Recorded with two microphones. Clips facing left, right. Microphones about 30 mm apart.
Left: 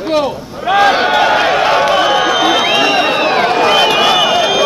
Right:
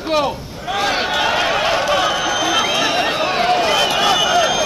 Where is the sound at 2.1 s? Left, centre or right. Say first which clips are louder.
Left 6 dB; left.